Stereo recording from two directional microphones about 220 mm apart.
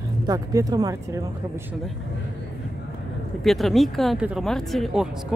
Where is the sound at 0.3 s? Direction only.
15° right (ahead or behind).